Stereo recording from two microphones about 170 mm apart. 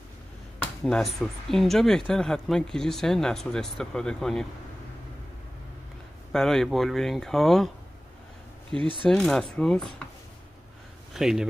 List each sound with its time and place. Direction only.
0.8 s speech: centre (ahead or behind)
6.3 s speech: 5° left (ahead or behind)
8.7 s speech: 30° right (ahead or behind)
9.1 s speech: centre (ahead or behind)
11.1 s speech: 5° right (ahead or behind)